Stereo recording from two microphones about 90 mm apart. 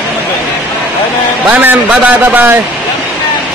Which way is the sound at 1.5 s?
20° right (ahead or behind).